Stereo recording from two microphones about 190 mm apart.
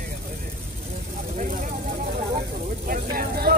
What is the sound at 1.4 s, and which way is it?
Speech, 45° right (ahead or behind).